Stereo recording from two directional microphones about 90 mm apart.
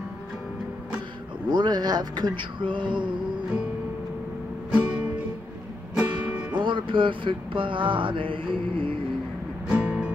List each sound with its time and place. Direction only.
1.5 s speech: 50° right (ahead or behind)
4.7 s music: 15° right (ahead or behind)
6.5 s music: 65° right (ahead or behind)
9.7 s music: 10° right (ahead or behind)